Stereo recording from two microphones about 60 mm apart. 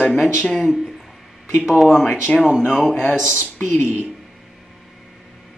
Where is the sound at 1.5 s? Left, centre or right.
Centre.